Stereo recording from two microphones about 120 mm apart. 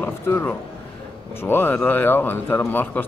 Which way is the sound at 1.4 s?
20° left (ahead or behind).